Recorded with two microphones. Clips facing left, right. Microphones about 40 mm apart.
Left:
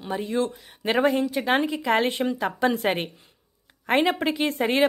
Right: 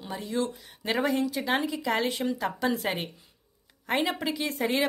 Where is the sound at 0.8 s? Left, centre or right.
Left.